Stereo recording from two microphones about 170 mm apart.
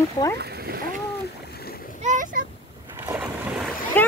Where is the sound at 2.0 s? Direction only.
50° right (ahead or behind).